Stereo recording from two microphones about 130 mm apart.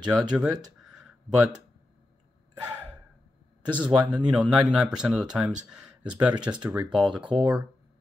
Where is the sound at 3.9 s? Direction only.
35° right (ahead or behind).